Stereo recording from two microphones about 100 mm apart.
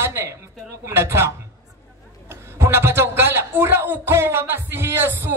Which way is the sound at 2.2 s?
25° right (ahead or behind).